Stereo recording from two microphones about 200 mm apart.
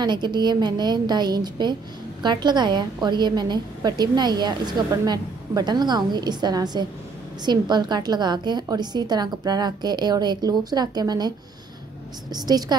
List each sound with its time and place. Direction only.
0.0 s a woman's voice: 20° right (ahead or behind)